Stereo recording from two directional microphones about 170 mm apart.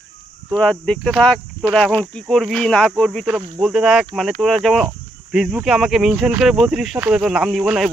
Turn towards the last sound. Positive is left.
turn(degrees=-5)  # may be behind; listen again after turning